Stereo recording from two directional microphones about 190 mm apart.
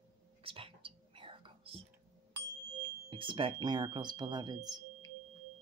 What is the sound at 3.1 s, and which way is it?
Speech, 25° right (ahead or behind).